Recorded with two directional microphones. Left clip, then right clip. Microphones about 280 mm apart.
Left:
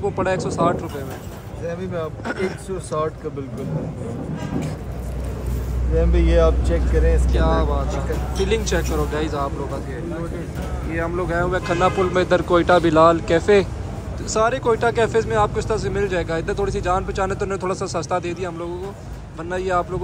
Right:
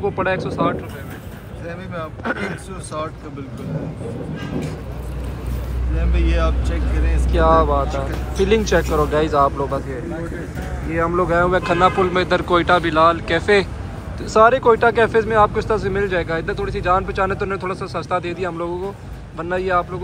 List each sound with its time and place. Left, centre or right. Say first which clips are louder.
0.0 s speech: right 1 dB; centre
2.2 s speech: right 3 dB; centre
5.9 s speech: left 6 dB; left
7.2 s speech: right 7 dB; centre
14.3 s speech: right 6 dB; centre